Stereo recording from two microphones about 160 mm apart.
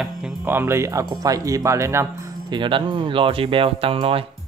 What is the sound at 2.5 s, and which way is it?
Speech, 30° right (ahead or behind).